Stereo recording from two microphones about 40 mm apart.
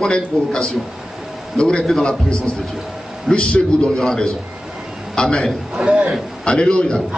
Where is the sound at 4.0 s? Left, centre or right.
Centre.